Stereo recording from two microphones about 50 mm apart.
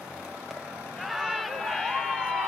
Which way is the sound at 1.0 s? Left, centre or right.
Centre.